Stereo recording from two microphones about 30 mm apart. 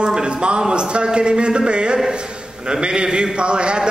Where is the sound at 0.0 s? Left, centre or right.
Right.